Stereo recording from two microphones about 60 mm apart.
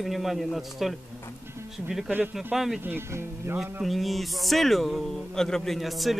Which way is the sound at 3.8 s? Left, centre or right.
Centre.